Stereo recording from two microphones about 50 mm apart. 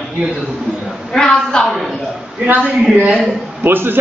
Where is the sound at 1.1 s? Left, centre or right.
Centre.